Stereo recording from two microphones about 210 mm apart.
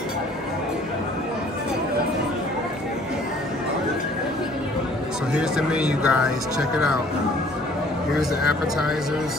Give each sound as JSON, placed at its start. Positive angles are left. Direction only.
{"t": 5.4, "sound": "speech", "side_deg": -5}
{"t": 8.2, "sound": "speech", "side_deg": 0}